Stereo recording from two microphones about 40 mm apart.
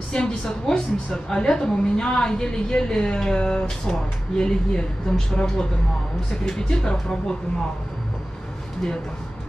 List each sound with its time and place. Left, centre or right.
0.1 s a woman's voice: left